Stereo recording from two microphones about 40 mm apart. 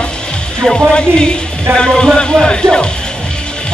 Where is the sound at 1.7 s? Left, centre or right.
Left.